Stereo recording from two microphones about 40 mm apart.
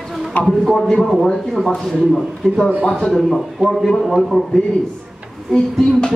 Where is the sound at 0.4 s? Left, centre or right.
Centre.